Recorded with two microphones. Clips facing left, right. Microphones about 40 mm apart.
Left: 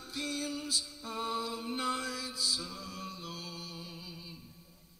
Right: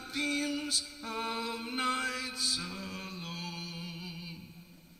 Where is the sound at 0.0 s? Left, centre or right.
Right.